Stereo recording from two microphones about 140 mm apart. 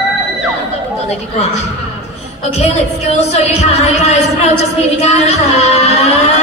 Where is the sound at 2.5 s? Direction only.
50° left (ahead or behind).